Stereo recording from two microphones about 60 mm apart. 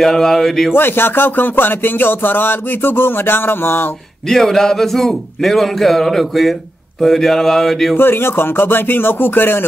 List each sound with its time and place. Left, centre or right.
0.0 s speech: centre
0.7 s music: left
4.3 s speech: centre
8.0 s music: left